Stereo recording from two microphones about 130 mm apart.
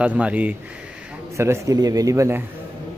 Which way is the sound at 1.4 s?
25° right (ahead or behind).